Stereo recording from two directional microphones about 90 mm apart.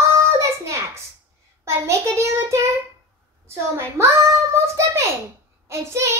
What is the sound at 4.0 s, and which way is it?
Child singing, 30° right (ahead or behind).